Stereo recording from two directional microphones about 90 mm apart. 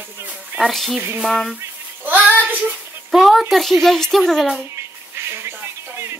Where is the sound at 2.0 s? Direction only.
20° right (ahead or behind).